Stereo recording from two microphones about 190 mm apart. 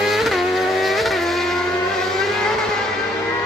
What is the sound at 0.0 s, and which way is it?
Vehicle, centre (ahead or behind).